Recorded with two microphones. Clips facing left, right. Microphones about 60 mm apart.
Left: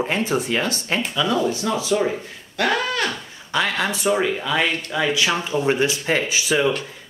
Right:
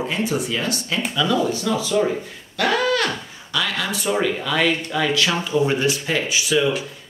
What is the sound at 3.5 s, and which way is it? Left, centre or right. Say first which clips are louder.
Speech: left 2 dB; left.